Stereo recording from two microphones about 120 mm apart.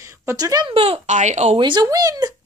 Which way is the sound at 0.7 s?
55° right (ahead or behind).